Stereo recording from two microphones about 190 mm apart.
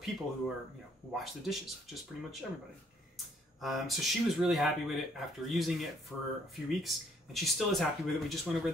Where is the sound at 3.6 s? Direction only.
Centre (ahead or behind).